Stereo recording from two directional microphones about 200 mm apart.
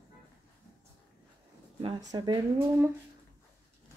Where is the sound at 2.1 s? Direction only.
20° right (ahead or behind).